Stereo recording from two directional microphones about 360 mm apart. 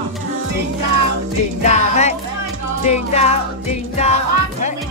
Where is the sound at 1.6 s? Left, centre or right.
Centre.